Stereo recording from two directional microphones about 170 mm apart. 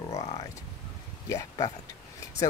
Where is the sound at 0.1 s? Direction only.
35° left (ahead or behind).